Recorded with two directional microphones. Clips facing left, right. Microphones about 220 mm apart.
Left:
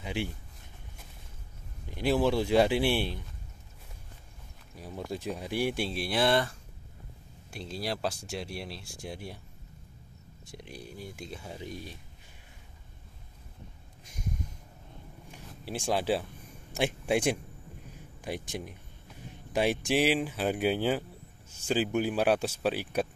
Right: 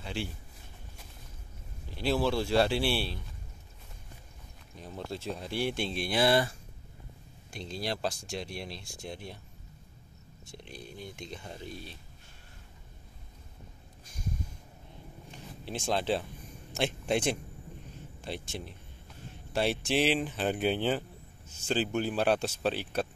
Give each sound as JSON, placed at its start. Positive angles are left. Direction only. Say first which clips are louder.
{"t": 0.0, "sound": "speech", "louder": "left 3 dB", "side_deg": 15}
{"t": 1.9, "sound": "speech", "louder": "left 2 dB", "side_deg": 15}
{"t": 4.7, "sound": "speech", "louder": "left 2 dB", "side_deg": 10}
{"t": 7.5, "sound": "speech", "louder": "even", "side_deg": 5}
{"t": 10.4, "sound": "speech", "louder": "left 2 dB", "side_deg": 10}
{"t": 15.4, "sound": "speech", "louder": "left 1 dB", "side_deg": 10}
{"t": 17.9, "sound": "a sound", "louder": "left 3 dB", "side_deg": 15}
{"t": 19.5, "sound": "speech", "louder": "left 2 dB", "side_deg": 15}